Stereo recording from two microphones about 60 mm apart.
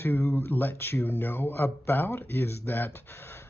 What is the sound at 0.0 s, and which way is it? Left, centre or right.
Speech, left.